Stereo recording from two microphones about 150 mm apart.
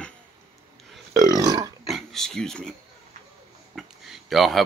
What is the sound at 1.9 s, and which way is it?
Oink, centre (ahead or behind).